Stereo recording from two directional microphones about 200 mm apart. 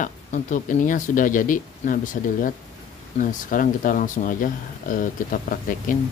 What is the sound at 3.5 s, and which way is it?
Speech, 40° left (ahead or behind).